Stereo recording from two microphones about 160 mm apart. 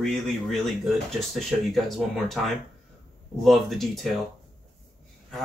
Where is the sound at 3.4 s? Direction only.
Centre (ahead or behind).